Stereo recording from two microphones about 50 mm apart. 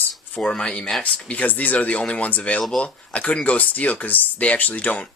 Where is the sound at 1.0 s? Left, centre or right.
Left.